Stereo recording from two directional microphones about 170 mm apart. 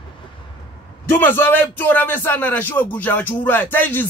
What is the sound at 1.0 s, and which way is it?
A man's voice, 10° left (ahead or behind).